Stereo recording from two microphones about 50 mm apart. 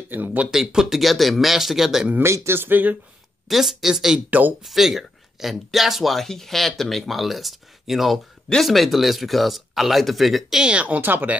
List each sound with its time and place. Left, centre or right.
0.1 s speech: right
0.5 s speech: centre
2.2 s speech: right
3.4 s speech: centre
4.3 s speech: right
4.6 s speech: centre
10.6 s speech: right
10.9 s speech: right